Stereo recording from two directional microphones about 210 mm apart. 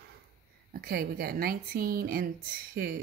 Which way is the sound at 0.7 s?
45° right (ahead or behind).